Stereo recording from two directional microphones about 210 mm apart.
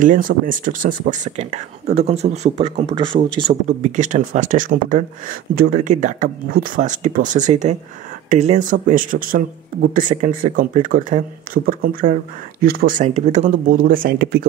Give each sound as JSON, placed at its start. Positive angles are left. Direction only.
{"t": 0.0, "sound": "speech", "side_deg": -40}